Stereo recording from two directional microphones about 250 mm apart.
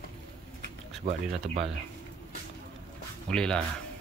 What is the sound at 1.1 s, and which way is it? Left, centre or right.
Speech, right.